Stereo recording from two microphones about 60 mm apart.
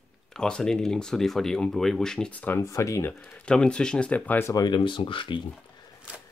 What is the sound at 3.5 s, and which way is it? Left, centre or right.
Speech, centre.